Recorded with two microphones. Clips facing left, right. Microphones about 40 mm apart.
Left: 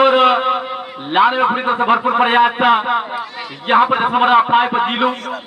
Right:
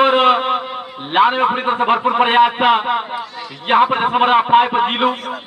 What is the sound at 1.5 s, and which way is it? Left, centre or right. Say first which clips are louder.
Speech: left 1 dB; right.